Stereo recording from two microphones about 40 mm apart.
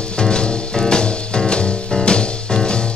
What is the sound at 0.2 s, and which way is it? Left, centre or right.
Music, left.